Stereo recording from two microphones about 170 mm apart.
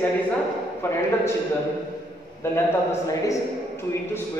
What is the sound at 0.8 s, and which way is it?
Speech, 15° left (ahead or behind).